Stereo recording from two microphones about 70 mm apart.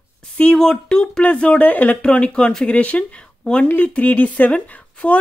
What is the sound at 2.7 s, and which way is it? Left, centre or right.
A woman's voice, centre.